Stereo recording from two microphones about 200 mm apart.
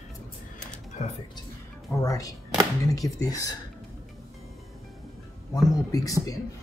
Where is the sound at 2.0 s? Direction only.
15° left (ahead or behind).